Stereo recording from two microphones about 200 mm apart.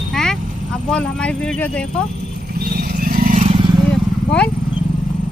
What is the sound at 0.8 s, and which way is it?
Speech, 5° left (ahead or behind).